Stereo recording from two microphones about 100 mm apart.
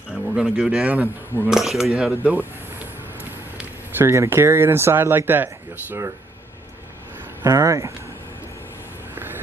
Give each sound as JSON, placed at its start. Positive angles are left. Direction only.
{"t": 0.4, "sound": "a man's voice", "side_deg": -10}
{"t": 1.5, "sound": "speech", "side_deg": -5}
{"t": 3.2, "sound": "speech", "side_deg": -20}
{"t": 7.4, "sound": "speech", "side_deg": -30}